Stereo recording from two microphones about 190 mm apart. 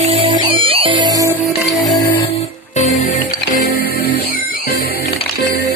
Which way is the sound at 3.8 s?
55° left (ahead or behind).